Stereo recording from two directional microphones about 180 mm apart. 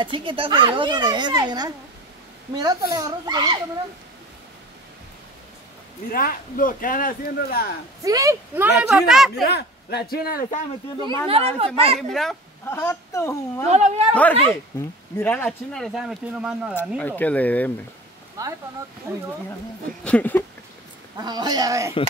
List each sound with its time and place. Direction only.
0.0 s a child's voice: 25° right (ahead or behind)
6.1 s speech: 50° left (ahead or behind)
8.0 s a child's voice: 20° right (ahead or behind)
8.6 s speech: 5° right (ahead or behind)
9.3 s speech: 65° left (ahead or behind)
11.2 s speech: 30° right (ahead or behind)
12.1 s speech: centre (ahead or behind)
12.6 s speech: 15° left (ahead or behind)
13.7 s speech: 40° right (ahead or behind)
14.7 s speech: 15° left (ahead or behind); by 16.7 s 5° right (ahead or behind)
17.0 s speech: 10° left (ahead or behind)
18.4 s a child's voice: 20° right (ahead or behind)
20.0 s speech: 5° left (ahead or behind)
21.2 s a child's voice: 25° right (ahead or behind)